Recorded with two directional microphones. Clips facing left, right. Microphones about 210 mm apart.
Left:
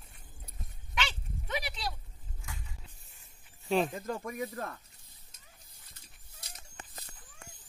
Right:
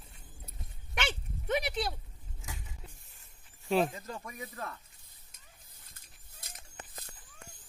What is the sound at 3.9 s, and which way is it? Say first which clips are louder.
Speech: left 7 dB; 50° left (ahead or behind).